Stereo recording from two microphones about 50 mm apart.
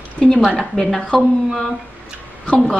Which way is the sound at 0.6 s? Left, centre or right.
Centre.